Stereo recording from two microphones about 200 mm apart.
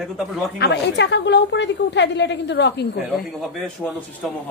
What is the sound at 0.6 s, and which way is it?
A woman's voice, 55° left (ahead or behind).